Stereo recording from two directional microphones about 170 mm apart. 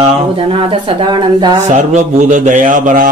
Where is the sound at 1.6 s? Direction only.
45° right (ahead or behind).